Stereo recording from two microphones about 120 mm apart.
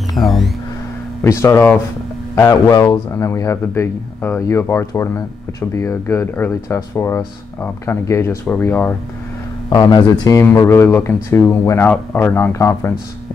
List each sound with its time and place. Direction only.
0.1 s a sound: centre (ahead or behind)
1.2 s a man's voice: 25° left (ahead or behind)
9.7 s a man's voice: 35° left (ahead or behind)